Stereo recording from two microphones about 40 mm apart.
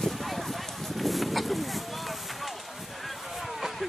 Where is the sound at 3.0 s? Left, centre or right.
Centre.